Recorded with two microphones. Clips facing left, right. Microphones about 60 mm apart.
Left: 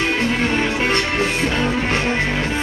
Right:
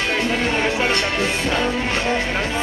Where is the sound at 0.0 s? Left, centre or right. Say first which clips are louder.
Left 1 dB; left.